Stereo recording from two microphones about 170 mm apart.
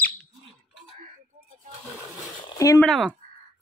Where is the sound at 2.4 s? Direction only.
20° left (ahead or behind).